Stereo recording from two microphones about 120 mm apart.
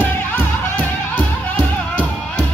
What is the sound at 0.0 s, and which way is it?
Music, 15° left (ahead or behind).